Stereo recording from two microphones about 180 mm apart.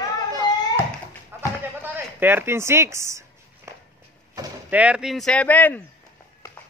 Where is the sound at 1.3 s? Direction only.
10° right (ahead or behind).